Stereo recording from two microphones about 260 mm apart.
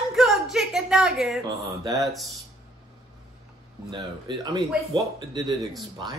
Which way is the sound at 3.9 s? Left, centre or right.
Centre.